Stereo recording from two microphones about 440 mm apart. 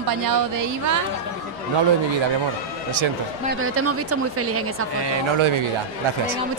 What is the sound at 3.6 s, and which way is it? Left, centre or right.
Speech, right.